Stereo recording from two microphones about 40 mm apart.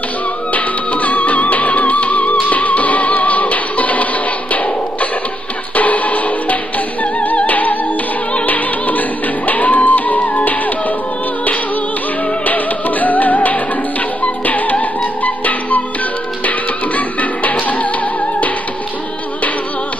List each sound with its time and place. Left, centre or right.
0.5 s music: left
5.8 s music: left
8.5 s opera: left
9.5 s music: left
12.4 s music: left